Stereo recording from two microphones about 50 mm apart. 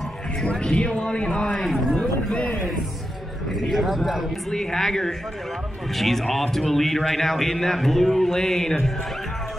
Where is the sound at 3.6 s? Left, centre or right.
Centre.